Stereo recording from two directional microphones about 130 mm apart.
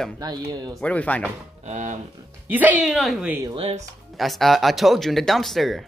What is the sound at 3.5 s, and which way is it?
Speech, 50° right (ahead or behind).